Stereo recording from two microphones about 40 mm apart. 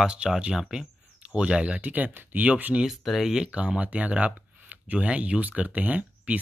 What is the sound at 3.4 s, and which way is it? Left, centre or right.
Speech, right.